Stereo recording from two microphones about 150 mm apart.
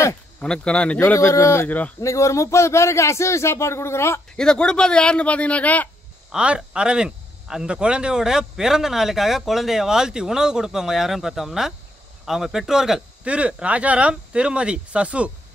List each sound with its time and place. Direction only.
0.4 s speech: 5° left (ahead or behind)
4.4 s speech: 5° left (ahead or behind)
6.3 s speech: 5° right (ahead or behind)